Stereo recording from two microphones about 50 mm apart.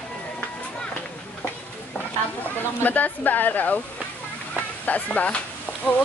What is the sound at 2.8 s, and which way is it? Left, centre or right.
Speech, left.